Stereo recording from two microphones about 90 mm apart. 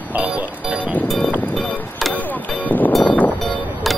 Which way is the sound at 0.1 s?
15° right (ahead or behind).